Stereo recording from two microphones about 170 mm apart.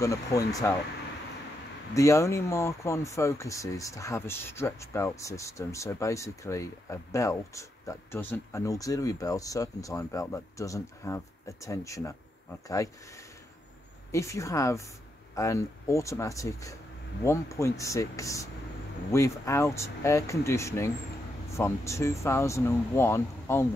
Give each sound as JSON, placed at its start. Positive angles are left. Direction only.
{"t": 0.0, "sound": "speech", "side_deg": 20}
{"t": 2.0, "sound": "speech", "side_deg": 20}
{"t": 14.1, "sound": "speech", "side_deg": 15}